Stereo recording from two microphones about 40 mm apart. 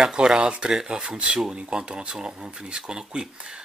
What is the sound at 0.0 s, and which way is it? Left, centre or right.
Speech, right.